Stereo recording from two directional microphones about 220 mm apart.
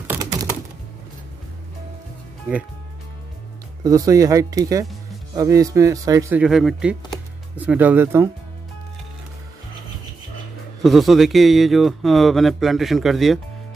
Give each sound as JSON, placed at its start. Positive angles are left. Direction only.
{"t": 0.1, "sound": "typing", "side_deg": -15}
{"t": 3.8, "sound": "a man's voice", "side_deg": -15}
{"t": 6.4, "sound": "a man's voice", "side_deg": 0}
{"t": 10.8, "sound": "speech", "side_deg": 0}